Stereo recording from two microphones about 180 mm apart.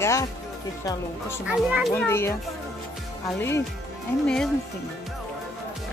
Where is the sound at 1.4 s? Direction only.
5° right (ahead or behind).